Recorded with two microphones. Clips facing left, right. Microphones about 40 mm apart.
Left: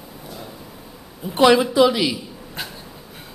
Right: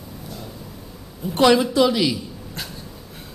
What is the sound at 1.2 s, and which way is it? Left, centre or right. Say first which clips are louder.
A man's voice: left 1 dB; centre.